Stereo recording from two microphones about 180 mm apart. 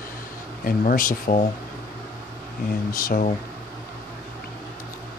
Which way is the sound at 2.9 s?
50° left (ahead or behind).